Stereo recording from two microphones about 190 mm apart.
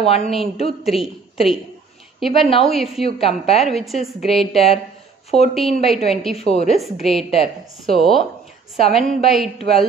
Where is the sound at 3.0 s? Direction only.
30° left (ahead or behind).